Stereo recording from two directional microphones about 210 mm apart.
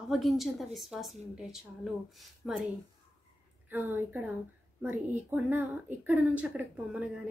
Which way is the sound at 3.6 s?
10° right (ahead or behind).